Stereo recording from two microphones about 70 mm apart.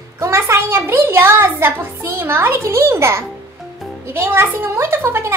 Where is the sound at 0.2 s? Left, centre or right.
Right.